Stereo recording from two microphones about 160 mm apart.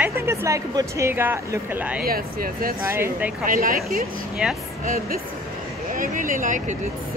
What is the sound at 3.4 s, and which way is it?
Speech, 60° right (ahead or behind).